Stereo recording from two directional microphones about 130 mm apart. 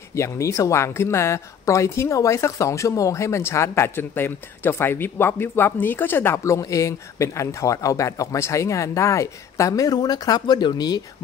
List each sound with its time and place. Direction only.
0.1 s speech: 20° left (ahead or behind)